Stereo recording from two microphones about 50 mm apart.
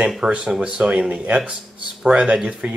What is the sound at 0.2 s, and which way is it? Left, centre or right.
Speech, right.